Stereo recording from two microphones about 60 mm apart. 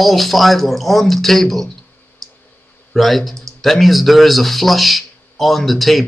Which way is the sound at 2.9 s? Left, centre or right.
Centre.